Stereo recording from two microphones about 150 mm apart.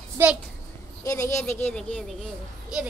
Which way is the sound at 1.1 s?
20° left (ahead or behind).